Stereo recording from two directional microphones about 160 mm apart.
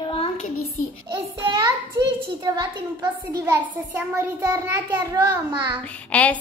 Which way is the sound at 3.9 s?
15° right (ahead or behind).